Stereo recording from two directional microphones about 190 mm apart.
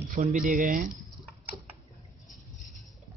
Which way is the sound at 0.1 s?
40° right (ahead or behind).